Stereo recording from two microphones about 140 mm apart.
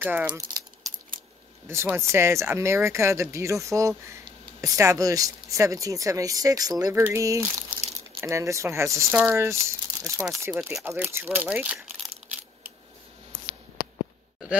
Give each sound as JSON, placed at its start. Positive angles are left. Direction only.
{"t": 0.0, "sound": "speech", "side_deg": -15}
{"t": 0.3, "sound": "a sound", "side_deg": -30}
{"t": 1.7, "sound": "speech", "side_deg": -20}